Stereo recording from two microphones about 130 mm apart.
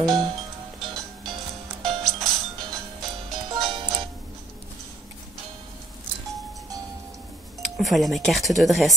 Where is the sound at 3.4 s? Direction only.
35° right (ahead or behind).